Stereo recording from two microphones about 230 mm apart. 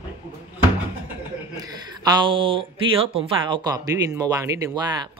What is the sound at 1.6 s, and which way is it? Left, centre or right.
Speech, centre.